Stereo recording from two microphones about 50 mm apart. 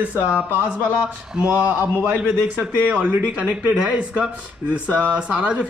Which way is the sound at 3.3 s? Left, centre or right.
Right.